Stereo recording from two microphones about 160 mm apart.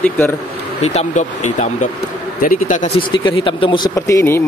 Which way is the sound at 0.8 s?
45° left (ahead or behind).